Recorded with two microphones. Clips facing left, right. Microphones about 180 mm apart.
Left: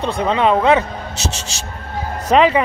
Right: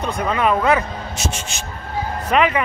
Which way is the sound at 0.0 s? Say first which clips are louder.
Left 3 dB; 25° left (ahead or behind).